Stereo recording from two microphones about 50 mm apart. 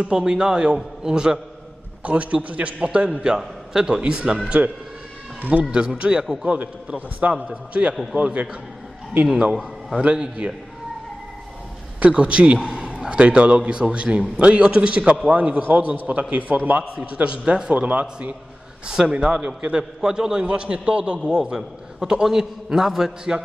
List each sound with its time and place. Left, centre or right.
0.0 s a man's voice: centre
2.0 s a man's voice: right
3.3 s a man's voice: centre
5.4 s a man's voice: right
12.0 s a man's voice: right
15.2 s a man's voice: right
17.7 s a man's voice: right
18.9 s a man's voice: centre